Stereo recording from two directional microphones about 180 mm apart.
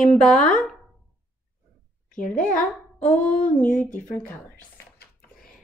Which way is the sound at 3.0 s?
5° left (ahead or behind).